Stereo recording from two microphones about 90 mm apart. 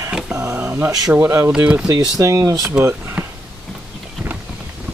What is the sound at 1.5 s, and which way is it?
Speech, 10° right (ahead or behind).